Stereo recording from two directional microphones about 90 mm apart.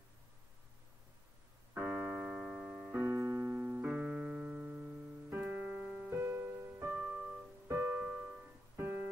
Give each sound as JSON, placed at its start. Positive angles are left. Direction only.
{"t": 1.7, "sound": "keyboard", "side_deg": -15}
{"t": 2.9, "sound": "keyboard", "side_deg": -30}
{"t": 5.3, "sound": "music", "side_deg": -15}
{"t": 6.0, "sound": "music", "side_deg": -25}
{"t": 7.0, "sound": "music", "side_deg": -10}
{"t": 7.6, "sound": "piano", "side_deg": -30}
{"t": 8.0, "sound": "music", "side_deg": -15}